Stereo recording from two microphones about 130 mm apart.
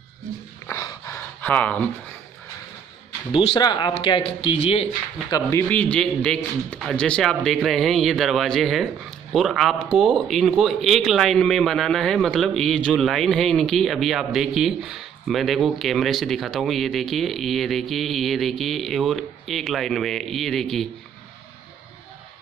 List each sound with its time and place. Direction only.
0.7 s a sound: 25° left (ahead or behind)
3.3 s speech: 35° left (ahead or behind)
5.5 s a man's voice: 15° left (ahead or behind)